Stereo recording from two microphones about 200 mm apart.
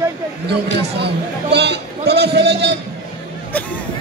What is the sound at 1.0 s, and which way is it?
Speech, 55° right (ahead or behind).